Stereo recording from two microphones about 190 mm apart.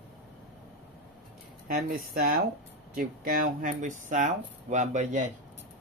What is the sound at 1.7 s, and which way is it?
Speech, 45° right (ahead or behind).